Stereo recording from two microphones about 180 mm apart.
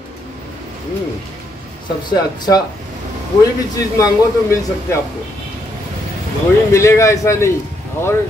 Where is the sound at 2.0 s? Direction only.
20° left (ahead or behind).